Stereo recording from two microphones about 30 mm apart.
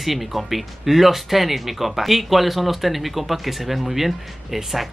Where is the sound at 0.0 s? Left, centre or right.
Centre.